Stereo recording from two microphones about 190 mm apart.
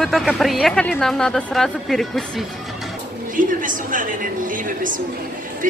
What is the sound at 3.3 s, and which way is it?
A woman's voice, 45° right (ahead or behind).